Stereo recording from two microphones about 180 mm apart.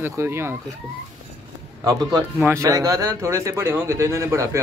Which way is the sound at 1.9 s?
20° right (ahead or behind).